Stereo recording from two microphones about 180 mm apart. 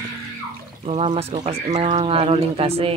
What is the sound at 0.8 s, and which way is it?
Speech, 30° right (ahead or behind).